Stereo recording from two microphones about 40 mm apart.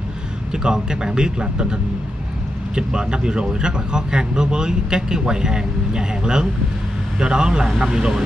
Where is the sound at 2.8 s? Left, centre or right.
Right.